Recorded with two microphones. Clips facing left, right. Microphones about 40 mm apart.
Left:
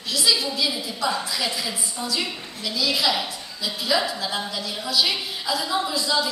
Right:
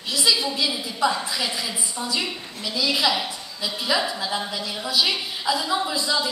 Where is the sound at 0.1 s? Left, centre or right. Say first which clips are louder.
Even; centre.